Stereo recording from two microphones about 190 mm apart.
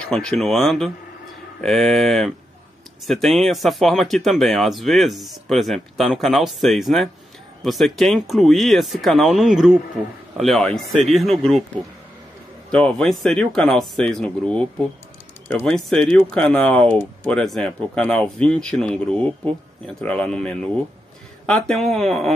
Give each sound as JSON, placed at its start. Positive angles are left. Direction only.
{"t": 0.0, "sound": "speech", "side_deg": 5}
{"t": 12.7, "sound": "speech", "side_deg": 5}